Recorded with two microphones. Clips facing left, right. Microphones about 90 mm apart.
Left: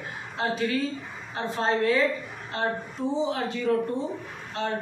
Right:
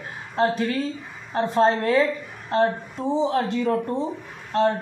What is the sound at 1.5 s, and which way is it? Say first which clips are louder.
Speech: right 4 dB; 40° right (ahead or behind).